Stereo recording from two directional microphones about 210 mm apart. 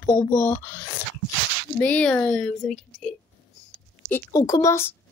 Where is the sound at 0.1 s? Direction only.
10° left (ahead or behind).